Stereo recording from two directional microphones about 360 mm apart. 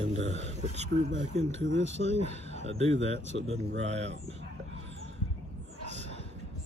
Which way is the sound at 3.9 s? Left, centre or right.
Centre.